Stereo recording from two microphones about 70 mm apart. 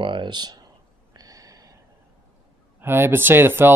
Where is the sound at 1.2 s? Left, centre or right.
Right.